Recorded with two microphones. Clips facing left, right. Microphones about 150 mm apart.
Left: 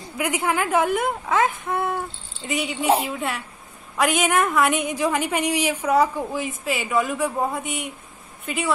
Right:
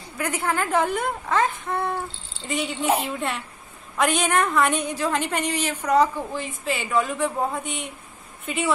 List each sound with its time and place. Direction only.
0.2 s a woman's voice: 15° left (ahead or behind)